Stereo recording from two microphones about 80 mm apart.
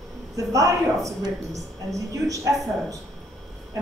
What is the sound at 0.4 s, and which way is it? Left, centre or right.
A woman's voice, right.